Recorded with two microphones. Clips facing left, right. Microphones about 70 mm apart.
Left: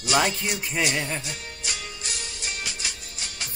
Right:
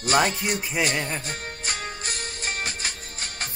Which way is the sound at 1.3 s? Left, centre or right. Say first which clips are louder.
Right 3 dB; right.